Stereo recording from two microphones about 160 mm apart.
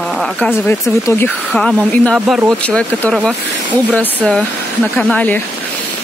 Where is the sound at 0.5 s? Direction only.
15° left (ahead or behind).